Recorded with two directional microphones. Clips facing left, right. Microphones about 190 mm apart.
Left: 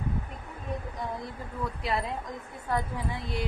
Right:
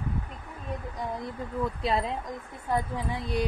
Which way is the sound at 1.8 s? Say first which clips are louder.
Right 2 dB; 25° right (ahead or behind).